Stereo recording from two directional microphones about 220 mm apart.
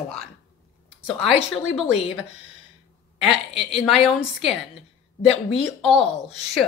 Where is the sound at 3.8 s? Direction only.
Centre (ahead or behind).